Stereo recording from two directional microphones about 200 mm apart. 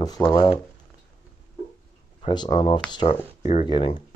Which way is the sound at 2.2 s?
20° left (ahead or behind).